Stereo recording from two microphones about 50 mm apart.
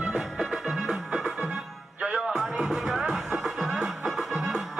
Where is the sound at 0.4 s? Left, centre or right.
Centre.